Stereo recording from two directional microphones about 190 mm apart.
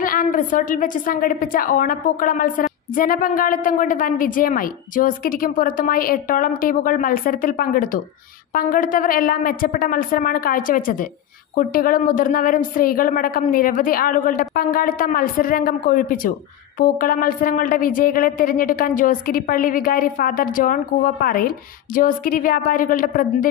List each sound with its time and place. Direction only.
0.0 s a woman's voice: 45° left (ahead or behind)